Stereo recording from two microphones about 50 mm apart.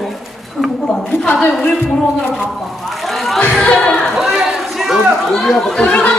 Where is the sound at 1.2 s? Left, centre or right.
Left.